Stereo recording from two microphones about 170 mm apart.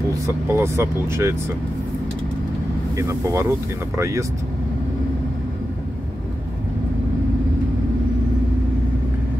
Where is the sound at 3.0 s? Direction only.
15° right (ahead or behind).